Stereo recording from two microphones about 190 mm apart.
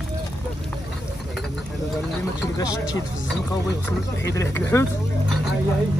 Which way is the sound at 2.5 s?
20° left (ahead or behind).